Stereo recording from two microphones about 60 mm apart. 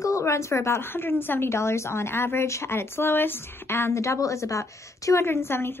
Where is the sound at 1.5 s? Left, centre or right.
Left.